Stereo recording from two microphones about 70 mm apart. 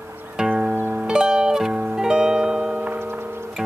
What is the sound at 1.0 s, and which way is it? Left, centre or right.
Music, centre.